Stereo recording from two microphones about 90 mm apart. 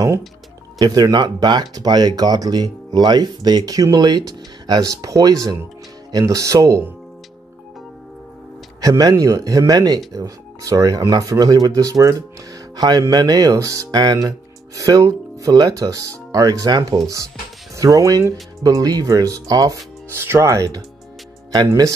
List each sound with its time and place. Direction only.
0.7 s speech: 45° right (ahead or behind)
8.8 s speech: 40° right (ahead or behind)
20.2 s speech: 30° right (ahead or behind)